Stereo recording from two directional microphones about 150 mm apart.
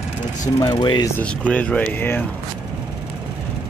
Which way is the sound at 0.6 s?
30° left (ahead or behind).